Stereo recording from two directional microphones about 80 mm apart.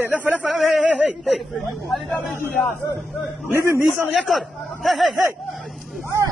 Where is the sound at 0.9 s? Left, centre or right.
Centre.